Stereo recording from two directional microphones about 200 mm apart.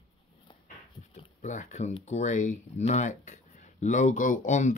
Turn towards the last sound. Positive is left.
turn(degrees=35)  # may be behind; listen again after turning